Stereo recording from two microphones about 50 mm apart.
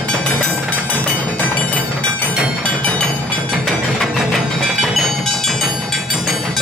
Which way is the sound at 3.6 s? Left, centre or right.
Centre.